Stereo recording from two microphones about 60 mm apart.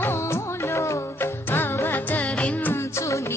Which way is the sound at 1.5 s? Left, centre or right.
Left.